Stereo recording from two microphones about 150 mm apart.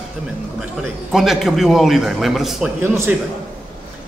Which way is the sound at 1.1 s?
Centre (ahead or behind).